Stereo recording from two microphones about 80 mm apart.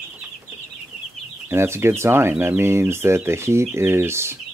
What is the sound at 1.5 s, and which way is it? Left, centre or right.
Speech, right.